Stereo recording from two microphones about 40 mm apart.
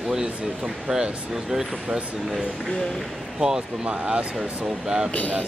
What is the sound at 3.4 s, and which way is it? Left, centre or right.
Speech, centre.